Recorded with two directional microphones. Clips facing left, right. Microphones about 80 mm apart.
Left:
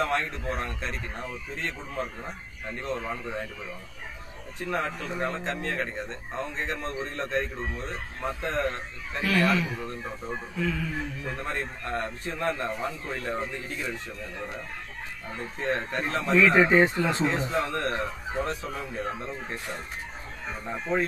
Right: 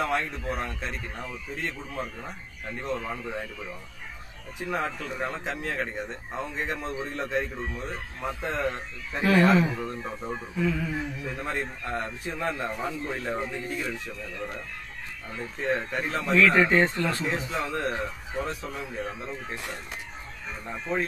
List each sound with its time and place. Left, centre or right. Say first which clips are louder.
0.0 s speech: even; centre
4.6 s a man's voice: even; centre
9.2 s speech: right 4 dB; right
10.0 s speech: right 1 dB; centre
15.6 s speech: right 1 dB; centre
17.6 s speech: left 1 dB; centre